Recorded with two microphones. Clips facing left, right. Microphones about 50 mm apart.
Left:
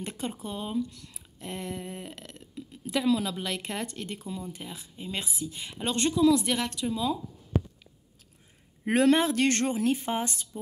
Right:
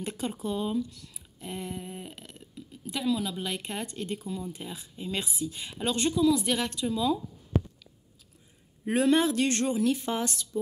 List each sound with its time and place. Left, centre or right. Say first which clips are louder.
0.0 s a woman's voice: right 2 dB; left
0.8 s a sound: left 2 dB; left
1.5 s a sound: left 1 dB; left
3.0 s speech: left 3 dB; left
3.4 s speech: left 1 dB; left
4.3 s a woman's voice: right 1 dB; left
6.1 s speech: left 3 dB; left
6.9 s speech: right 3 dB; left
8.8 s a woman's voice: left 1 dB; left